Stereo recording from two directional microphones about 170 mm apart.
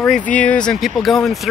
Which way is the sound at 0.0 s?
5° left (ahead or behind).